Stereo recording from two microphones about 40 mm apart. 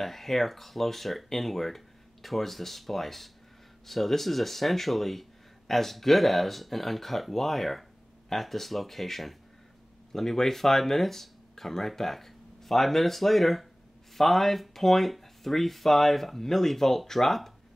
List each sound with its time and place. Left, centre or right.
0.0 s speech: centre